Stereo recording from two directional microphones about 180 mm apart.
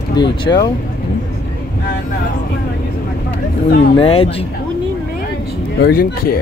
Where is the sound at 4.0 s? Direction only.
30° left (ahead or behind).